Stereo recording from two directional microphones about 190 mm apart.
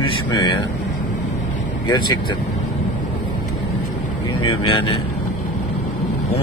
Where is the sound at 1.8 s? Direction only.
25° left (ahead or behind).